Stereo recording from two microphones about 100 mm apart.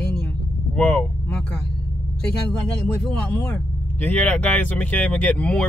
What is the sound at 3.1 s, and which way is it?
Speech, 15° left (ahead or behind).